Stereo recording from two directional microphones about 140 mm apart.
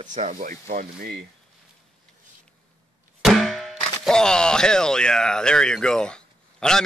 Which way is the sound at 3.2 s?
Centre (ahead or behind).